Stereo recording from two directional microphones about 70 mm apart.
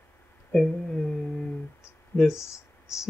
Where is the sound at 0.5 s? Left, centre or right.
Centre.